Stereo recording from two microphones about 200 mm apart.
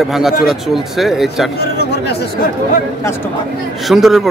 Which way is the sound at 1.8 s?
55° left (ahead or behind).